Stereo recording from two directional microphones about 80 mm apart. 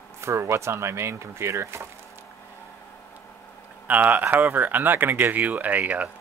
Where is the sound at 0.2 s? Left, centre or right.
Right.